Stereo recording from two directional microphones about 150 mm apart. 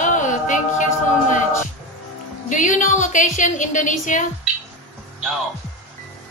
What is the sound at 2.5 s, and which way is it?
A woman's voice, 55° left (ahead or behind).